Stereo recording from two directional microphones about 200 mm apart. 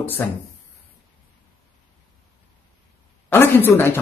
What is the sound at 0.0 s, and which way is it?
Speech, 10° left (ahead or behind).